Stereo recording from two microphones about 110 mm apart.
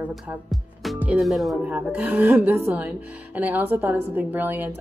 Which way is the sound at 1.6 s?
15° right (ahead or behind).